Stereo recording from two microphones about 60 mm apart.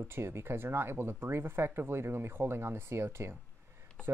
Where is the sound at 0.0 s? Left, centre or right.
Right.